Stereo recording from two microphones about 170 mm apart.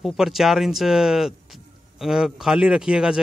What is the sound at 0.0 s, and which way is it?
A man's voice, centre (ahead or behind).